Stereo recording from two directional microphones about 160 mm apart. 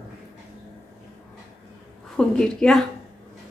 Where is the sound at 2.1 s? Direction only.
5° left (ahead or behind).